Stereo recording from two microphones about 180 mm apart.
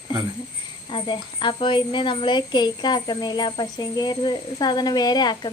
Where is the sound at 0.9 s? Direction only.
30° left (ahead or behind).